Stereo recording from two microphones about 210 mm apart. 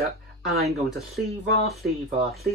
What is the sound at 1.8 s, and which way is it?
Speech, centre (ahead or behind).